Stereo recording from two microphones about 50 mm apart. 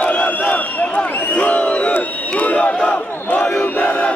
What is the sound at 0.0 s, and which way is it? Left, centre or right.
Crowd, left.